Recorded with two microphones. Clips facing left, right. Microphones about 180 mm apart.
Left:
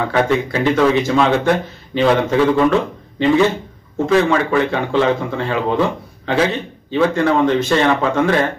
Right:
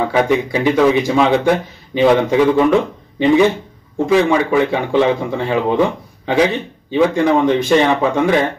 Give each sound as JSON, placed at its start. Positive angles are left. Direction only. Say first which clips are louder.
{"t": 0.1, "sound": "a man's voice", "louder": "right 2 dB", "side_deg": -15}